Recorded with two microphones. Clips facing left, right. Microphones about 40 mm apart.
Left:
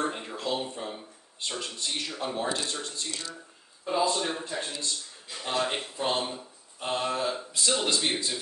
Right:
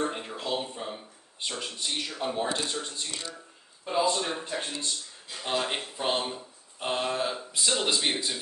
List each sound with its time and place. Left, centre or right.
0.0 s a sound: centre
1.6 s speech: centre
4.2 s speech: centre
4.5 s speech: centre